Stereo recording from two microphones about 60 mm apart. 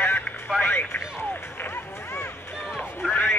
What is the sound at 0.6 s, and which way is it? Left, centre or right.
Music, left.